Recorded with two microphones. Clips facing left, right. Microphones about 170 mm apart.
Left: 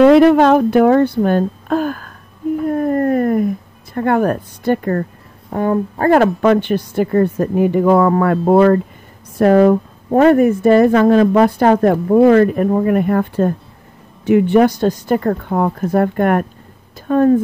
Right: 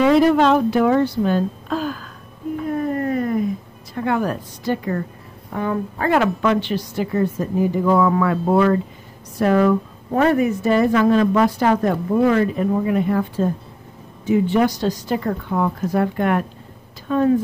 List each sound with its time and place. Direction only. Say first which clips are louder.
0.1 s a woman's voice: left 5 dB; 60° left (ahead or behind)
5.5 s a woman's voice: left 6 dB; 40° left (ahead or behind)